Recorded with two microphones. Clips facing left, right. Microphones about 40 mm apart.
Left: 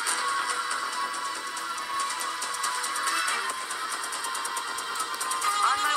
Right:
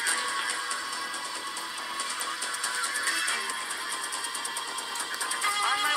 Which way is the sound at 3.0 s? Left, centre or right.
Left.